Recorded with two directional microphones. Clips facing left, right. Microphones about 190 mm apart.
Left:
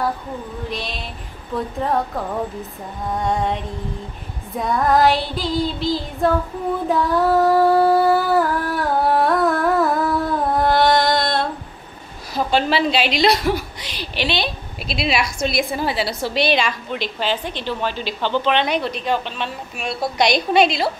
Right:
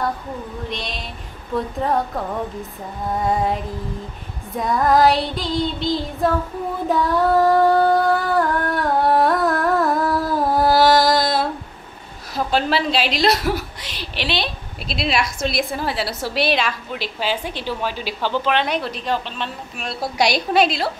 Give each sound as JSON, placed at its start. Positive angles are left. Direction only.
{"t": 0.7, "sound": "a woman's voice", "side_deg": 0}
{"t": 6.9, "sound": "female singing", "side_deg": 0}
{"t": 12.4, "sound": "a woman's voice", "side_deg": 0}